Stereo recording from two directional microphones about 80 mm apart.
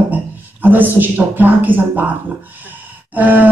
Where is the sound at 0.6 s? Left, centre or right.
Right.